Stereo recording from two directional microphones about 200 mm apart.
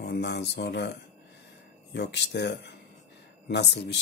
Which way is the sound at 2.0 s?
60° left (ahead or behind).